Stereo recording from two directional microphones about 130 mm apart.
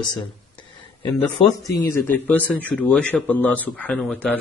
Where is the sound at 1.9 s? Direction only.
15° left (ahead or behind).